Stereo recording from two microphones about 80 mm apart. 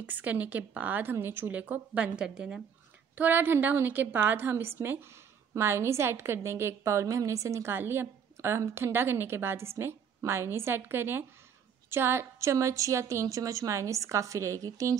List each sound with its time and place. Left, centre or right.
0.0 s a woman's voice: right
3.2 s a woman's voice: right